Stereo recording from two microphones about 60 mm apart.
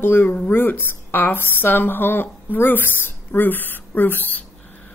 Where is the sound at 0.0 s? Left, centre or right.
Left.